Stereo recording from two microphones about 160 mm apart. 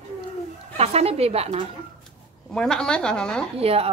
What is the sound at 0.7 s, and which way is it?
Speech, 40° right (ahead or behind).